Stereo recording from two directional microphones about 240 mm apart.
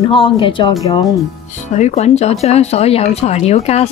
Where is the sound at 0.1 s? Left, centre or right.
Left.